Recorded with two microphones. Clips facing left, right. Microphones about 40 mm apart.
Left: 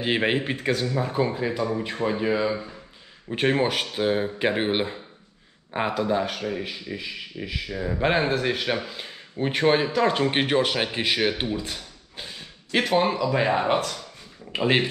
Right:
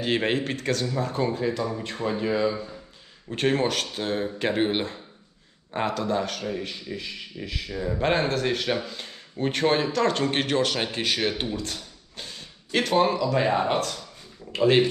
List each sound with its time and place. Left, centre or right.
0.0 s speech: centre